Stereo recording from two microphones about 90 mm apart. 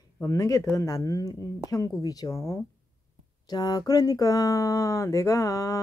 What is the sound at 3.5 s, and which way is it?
Speech, 45° left (ahead or behind).